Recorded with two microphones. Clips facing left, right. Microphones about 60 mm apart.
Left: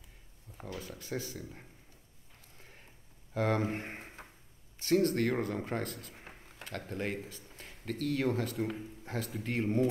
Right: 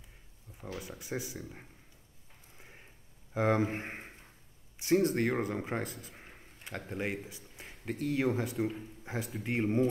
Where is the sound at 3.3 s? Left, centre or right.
Centre.